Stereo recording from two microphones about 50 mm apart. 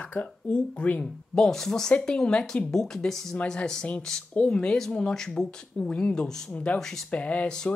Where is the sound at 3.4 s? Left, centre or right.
Centre.